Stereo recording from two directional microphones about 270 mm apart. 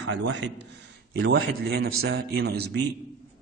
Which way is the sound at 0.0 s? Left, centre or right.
Right.